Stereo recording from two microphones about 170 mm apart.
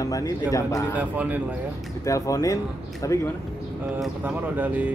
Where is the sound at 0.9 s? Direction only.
10° right (ahead or behind).